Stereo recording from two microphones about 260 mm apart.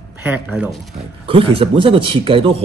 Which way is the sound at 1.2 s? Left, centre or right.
Right.